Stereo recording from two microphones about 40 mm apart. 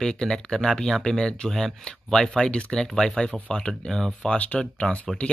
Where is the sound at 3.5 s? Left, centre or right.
Left.